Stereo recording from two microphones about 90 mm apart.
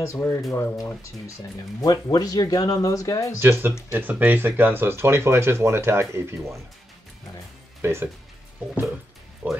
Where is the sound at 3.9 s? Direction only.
20° right (ahead or behind).